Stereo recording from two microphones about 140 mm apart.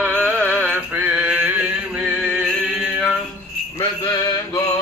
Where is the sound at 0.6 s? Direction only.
10° right (ahead or behind).